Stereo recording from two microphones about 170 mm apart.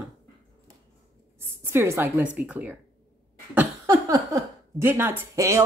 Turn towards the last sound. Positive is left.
turn(degrees=-15)  # may be behind; listen again after turning